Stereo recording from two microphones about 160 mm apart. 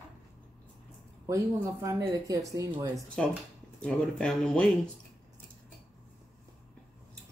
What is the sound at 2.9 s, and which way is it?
Speech, 5° left (ahead or behind).